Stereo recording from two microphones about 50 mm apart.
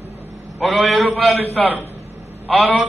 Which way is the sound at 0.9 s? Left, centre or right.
Centre.